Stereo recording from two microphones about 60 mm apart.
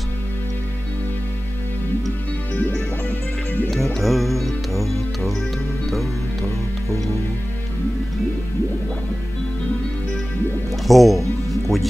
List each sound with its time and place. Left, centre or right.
2.5 s music: left
3.7 s music: centre
10.9 s music: centre